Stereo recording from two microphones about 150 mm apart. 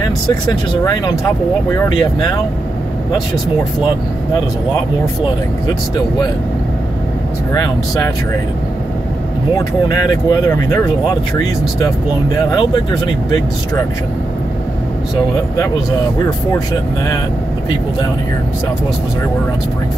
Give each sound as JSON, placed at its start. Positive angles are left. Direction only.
{"t": 0.0, "sound": "speech", "side_deg": 30}
{"t": 7.5, "sound": "speech", "side_deg": 25}
{"t": 9.8, "sound": "speech", "side_deg": 25}
{"t": 12.4, "sound": "speech", "side_deg": 30}